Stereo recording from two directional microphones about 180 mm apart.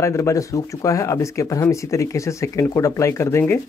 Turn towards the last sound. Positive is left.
turn(degrees=15)  # may be behind; listen again after turning